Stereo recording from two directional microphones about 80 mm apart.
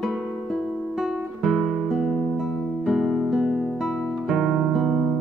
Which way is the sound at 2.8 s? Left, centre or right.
Centre.